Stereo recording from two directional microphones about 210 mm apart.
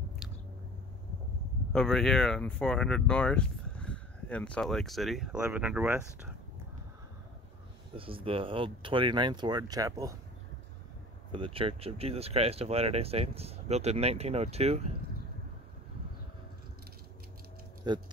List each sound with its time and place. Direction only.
1.7 s speech: centre (ahead or behind)
7.9 s speech: 25° right (ahead or behind)
11.3 s speech: 25° right (ahead or behind)
17.9 s speech: 20° right (ahead or behind)